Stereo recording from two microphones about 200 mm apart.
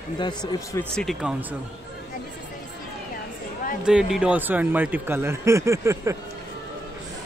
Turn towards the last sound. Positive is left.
turn(degrees=-15)  # may be behind; listen again after turning